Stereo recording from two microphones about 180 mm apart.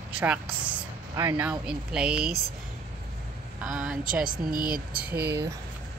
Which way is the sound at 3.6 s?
5° right (ahead or behind).